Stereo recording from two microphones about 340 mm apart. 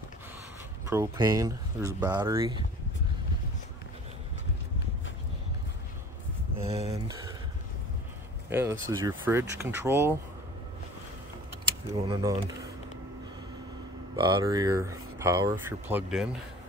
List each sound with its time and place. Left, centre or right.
0.8 s speech: centre
6.6 s speech: centre
8.5 s speech: centre
11.9 s speech: centre
14.1 s speech: centre